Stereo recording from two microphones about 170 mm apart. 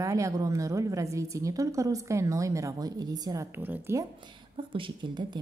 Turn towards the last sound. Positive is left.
turn(degrees=-30)  # may be behind; listen again after turning